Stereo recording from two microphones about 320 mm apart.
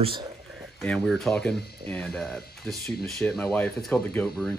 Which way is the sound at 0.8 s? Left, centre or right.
Centre.